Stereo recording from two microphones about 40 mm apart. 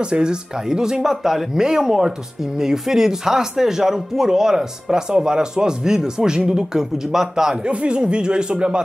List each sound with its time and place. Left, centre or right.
0.0 s speech: right
7.6 s speech: right